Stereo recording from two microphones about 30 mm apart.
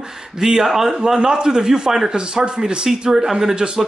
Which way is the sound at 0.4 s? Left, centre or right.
Centre.